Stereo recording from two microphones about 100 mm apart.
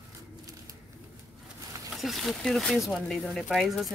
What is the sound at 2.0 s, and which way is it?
Speech, centre (ahead or behind).